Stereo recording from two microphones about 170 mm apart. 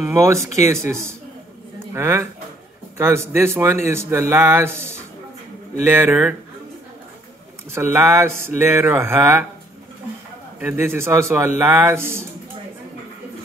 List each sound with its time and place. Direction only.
0.1 s speech: 15° right (ahead or behind)
2.0 s speech: 15° right (ahead or behind)
7.7 s speech: 15° right (ahead or behind)
10.6 s speech: 15° right (ahead or behind)